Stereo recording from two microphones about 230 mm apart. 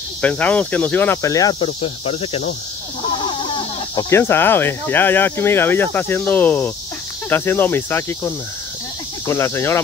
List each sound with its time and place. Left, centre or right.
0.2 s speech: centre; by 2.4 s left
3.5 s speech: centre
9.3 s speech: centre